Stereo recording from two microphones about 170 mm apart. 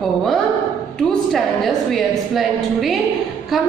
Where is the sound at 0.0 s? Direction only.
Centre (ahead or behind).